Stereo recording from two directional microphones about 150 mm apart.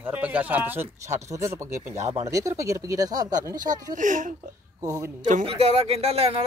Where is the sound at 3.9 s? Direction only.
60° right (ahead or behind).